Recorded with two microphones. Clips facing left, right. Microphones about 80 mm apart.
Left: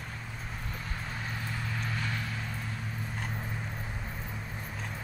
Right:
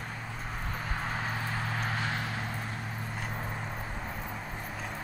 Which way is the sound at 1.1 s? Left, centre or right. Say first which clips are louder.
Right 3 dB; right.